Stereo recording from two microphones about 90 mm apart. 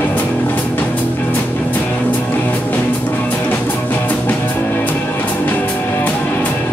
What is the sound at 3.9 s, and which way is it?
Music, 20° left (ahead or behind).